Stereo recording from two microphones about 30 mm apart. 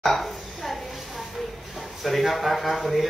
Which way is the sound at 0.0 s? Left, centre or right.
Centre.